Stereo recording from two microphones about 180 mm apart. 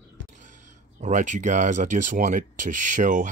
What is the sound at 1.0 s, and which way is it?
Speech, 45° right (ahead or behind).